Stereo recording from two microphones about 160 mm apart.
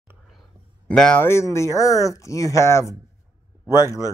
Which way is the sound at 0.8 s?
5° left (ahead or behind).